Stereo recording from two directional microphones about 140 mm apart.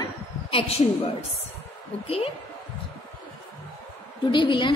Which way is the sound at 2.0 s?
45° left (ahead or behind).